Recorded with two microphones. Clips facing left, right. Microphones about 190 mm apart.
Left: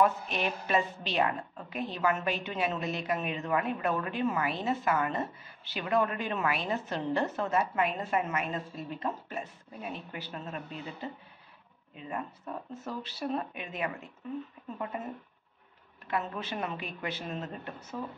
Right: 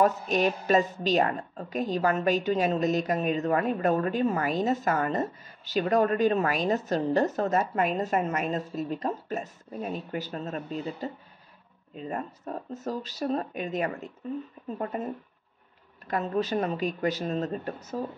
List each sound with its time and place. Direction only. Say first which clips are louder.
0.0 s a woman's voice: right 4 dB; 40° right (ahead or behind)
16.1 s a woman's voice: right 7 dB; 40° right (ahead or behind)